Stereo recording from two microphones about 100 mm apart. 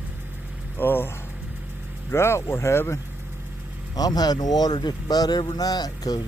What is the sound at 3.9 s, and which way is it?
Speech, 40° left (ahead or behind).